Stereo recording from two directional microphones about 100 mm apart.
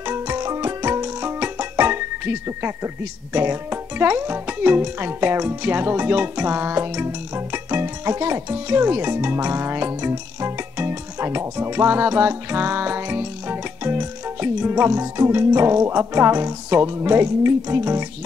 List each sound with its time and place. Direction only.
0.4 s music: 35° right (ahead or behind)
3.3 s speech: 20° right (ahead or behind)